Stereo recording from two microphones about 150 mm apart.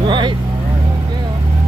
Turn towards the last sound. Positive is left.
turn(degrees=-30)  # may be behind; listen again after turning